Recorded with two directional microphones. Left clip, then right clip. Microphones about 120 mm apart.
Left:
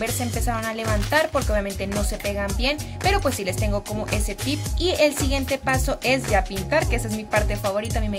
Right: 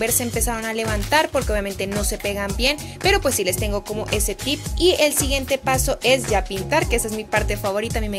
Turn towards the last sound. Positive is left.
turn(degrees=-55)  # may be behind; listen again after turning